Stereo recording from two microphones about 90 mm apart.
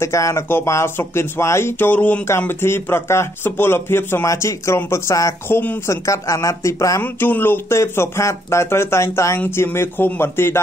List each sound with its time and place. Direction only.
0.0 s speech: 30° left (ahead or behind)
5.5 s speech: 20° left (ahead or behind)
5.9 s speech: 35° left (ahead or behind)
7.0 s speech: 20° left (ahead or behind)